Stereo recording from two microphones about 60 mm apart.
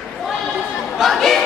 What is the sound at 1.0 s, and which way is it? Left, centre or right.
Chatter, centre.